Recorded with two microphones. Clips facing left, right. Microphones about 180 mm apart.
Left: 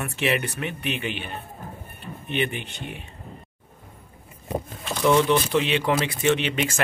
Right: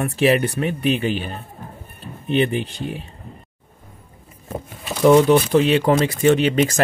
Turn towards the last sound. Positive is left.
turn(degrees=-40)  # may be behind; listen again after turning